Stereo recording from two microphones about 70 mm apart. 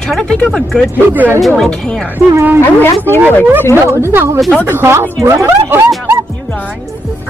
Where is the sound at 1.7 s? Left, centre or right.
Centre.